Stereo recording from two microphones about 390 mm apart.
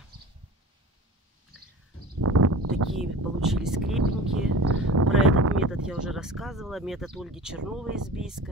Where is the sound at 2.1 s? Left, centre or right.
Right.